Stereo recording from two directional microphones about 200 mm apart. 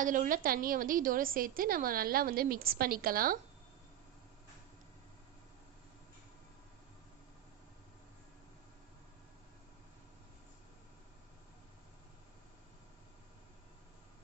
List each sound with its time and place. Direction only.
0.0 s a woman's voice: 40° right (ahead or behind)